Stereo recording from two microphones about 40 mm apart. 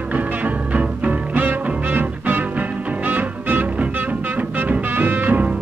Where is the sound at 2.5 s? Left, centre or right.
Right.